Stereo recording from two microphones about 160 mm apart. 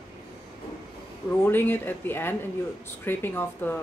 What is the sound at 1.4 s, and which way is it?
Speech, 10° left (ahead or behind).